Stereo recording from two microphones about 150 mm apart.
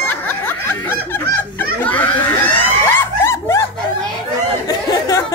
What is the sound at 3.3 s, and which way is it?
Dog, 20° left (ahead or behind).